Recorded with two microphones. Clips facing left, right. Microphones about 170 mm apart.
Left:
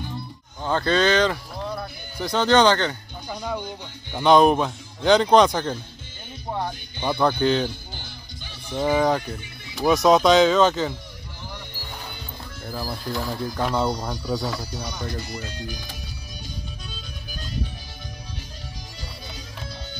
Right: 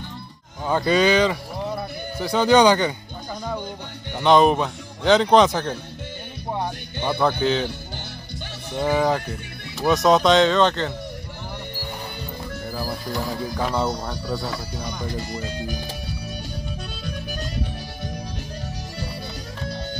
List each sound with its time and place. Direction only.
0.7 s speech: 10° right (ahead or behind)
4.1 s speech: centre (ahead or behind)
7.0 s speech: centre (ahead or behind)
8.7 s speech: centre (ahead or behind)
12.7 s speech: 5° right (ahead or behind)
15.4 s speech: 50° right (ahead or behind)